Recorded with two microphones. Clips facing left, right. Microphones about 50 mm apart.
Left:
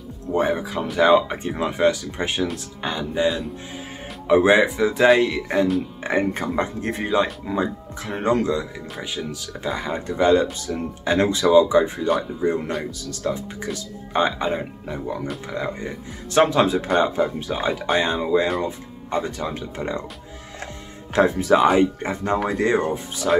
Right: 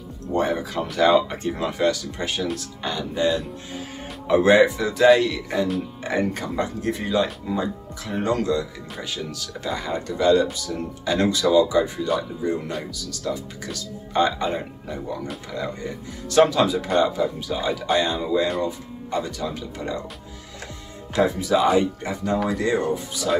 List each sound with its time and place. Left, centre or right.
0.3 s speech: centre; by 13.4 s left
13.7 s speech: left
21.1 s speech: left